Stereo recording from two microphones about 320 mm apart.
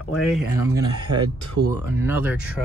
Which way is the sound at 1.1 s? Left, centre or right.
Right.